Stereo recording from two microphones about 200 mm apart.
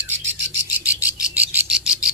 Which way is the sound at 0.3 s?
65° right (ahead or behind).